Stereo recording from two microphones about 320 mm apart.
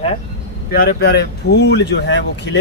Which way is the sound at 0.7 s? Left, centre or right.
Left.